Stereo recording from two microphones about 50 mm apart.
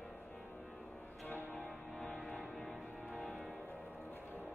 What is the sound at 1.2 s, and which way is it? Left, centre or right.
Music, left.